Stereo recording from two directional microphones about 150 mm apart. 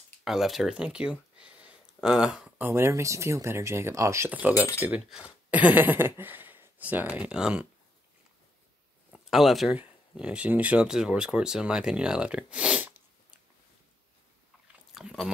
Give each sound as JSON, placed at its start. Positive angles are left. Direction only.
{"t": 0.2, "sound": "speech", "side_deg": 0}
{"t": 2.7, "sound": "speech", "side_deg": -20}
{"t": 9.1, "sound": "speech", "side_deg": 0}
{"t": 15.0, "sound": "speech", "side_deg": -5}